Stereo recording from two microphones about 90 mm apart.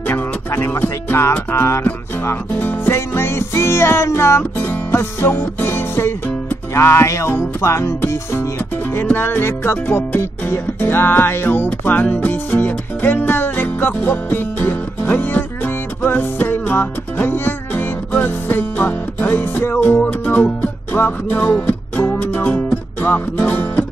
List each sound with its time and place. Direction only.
0.0 s music: 25° left (ahead or behind)
4.4 s music: 20° left (ahead or behind)